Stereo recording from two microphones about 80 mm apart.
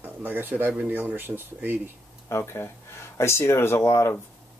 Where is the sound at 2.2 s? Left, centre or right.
Left.